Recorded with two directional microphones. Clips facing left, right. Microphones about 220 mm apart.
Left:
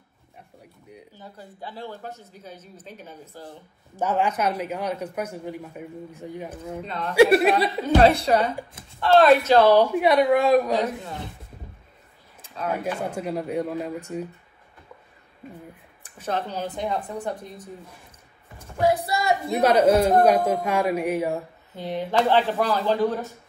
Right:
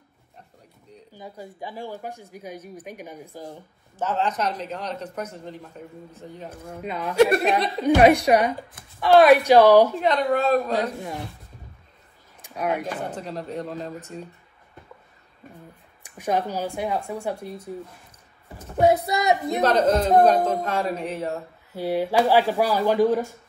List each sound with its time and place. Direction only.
1.1 s speech: 10° right (ahead or behind)
3.9 s a man's voice: 10° left (ahead or behind)
6.8 s speech: 10° right (ahead or behind)
7.2 s a man's voice: 5° left (ahead or behind)
7.8 s speech: 15° right (ahead or behind)
9.9 s a man's voice: 10° left (ahead or behind)
12.4 s a sound: 15° right (ahead or behind)
12.8 s a man's voice: 10° left (ahead or behind)
16.0 s speech: 15° right (ahead or behind)
18.8 s speech: 20° right (ahead or behind)
19.6 s a man's voice: 10° left (ahead or behind)
21.7 s speech: 10° right (ahead or behind)